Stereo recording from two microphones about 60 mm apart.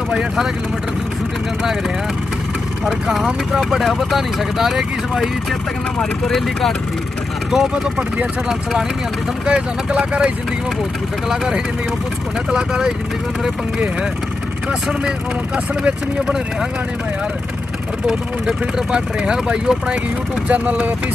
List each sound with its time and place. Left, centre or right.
2.8 s speech: centre
7.5 s speech: centre
9.5 s speech: centre
14.7 s speech: centre
18.0 s speech: centre
18.9 s speech: centre